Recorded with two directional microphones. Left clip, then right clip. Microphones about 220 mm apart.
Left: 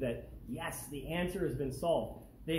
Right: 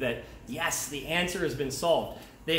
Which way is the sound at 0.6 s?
10° right (ahead or behind).